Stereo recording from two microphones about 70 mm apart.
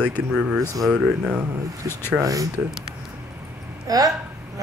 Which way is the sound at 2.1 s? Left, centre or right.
Right.